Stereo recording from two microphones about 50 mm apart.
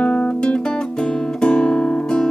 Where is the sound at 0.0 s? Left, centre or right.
Left.